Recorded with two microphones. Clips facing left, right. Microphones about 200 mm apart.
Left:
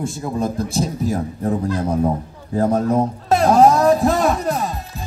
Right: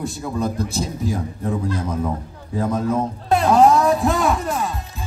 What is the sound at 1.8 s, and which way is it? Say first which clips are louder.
Speech: left 5 dB; 35° left (ahead or behind).